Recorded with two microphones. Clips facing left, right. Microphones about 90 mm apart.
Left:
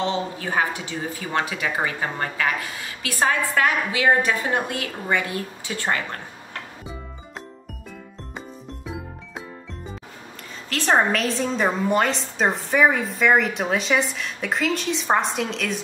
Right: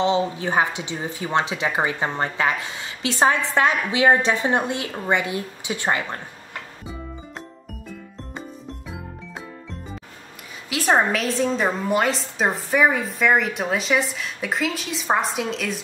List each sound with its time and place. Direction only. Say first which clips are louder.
0.0 s speech: right 4 dB; 20° right (ahead or behind)
10.7 s a woman's voice: even; 5° right (ahead or behind)